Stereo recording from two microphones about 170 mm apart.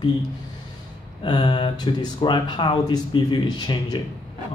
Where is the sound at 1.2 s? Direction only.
25° left (ahead or behind).